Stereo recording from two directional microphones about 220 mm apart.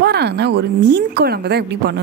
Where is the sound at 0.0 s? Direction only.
50° right (ahead or behind).